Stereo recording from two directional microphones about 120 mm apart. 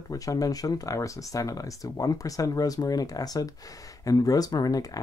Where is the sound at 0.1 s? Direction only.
30° left (ahead or behind).